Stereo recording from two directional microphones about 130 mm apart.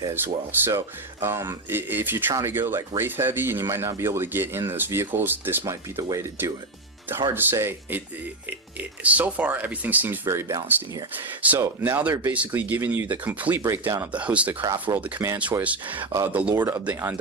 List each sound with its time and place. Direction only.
0.1 s speech: 15° right (ahead or behind)
14.1 s speech: 10° right (ahead or behind)
14.6 s speech: 30° right (ahead or behind)
15.0 s speech: 15° right (ahead or behind)
16.5 s speech: 20° right (ahead or behind)